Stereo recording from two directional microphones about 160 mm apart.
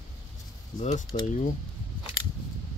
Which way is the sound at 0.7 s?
50° left (ahead or behind).